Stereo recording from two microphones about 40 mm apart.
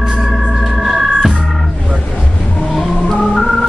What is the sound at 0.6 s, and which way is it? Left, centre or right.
Organ, centre.